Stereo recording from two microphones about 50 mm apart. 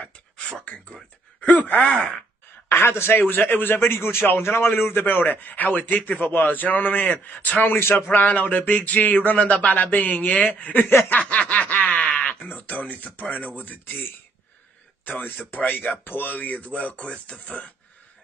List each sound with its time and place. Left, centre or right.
0.0 s a sound: left
1.4 s a man's voice: left
1.9 s speech: left
2.7 s a man's voice: left
4.9 s a man's voice: left
11.1 s snicker: left
12.4 s a man's voice: left